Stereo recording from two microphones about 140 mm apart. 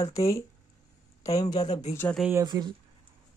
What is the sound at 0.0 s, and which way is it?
Speech, 25° left (ahead or behind).